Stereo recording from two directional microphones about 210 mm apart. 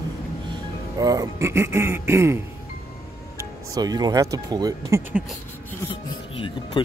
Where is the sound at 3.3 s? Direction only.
20° right (ahead or behind).